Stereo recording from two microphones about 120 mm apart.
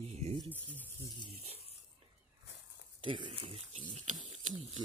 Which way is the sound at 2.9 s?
40° right (ahead or behind).